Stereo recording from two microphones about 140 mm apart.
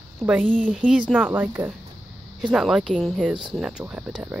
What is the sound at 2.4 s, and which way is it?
Speech, 5° right (ahead or behind).